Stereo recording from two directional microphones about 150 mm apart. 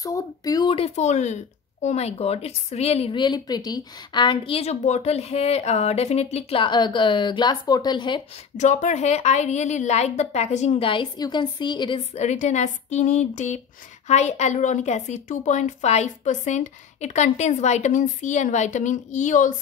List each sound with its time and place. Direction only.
0.0 s speech: 25° left (ahead or behind)
0.7 s speech: 45° left (ahead or behind)
8.5 s speech: 55° left (ahead or behind)
10.9 s a woman's voice: 30° left (ahead or behind)
12.2 s speech: 50° left (ahead or behind)